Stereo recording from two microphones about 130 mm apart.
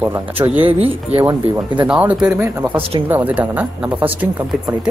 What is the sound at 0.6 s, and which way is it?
Speech, 45° right (ahead or behind).